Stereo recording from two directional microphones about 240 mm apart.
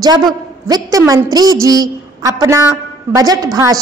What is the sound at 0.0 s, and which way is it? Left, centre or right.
A woman's voice, centre.